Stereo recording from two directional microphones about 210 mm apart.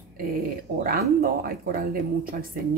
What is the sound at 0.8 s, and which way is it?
A woman's voice, 45° right (ahead or behind).